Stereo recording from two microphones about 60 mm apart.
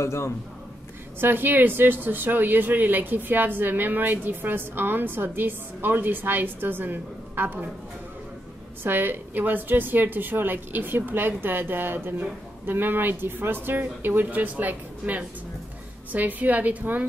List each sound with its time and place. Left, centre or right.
0.0 s a man's voice: left
1.2 s speech: right
8.8 s a woman's voice: right